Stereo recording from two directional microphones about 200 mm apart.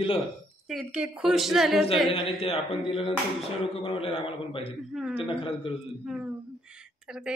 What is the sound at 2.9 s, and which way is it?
A man's voice, 30° left (ahead or behind).